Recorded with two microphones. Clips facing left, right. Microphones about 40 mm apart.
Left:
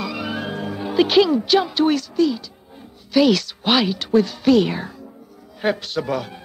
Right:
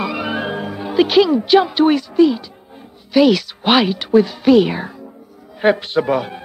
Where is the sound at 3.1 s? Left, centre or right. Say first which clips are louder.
Right 3 dB; centre.